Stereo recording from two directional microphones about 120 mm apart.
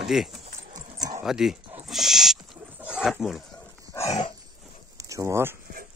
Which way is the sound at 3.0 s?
5° right (ahead or behind).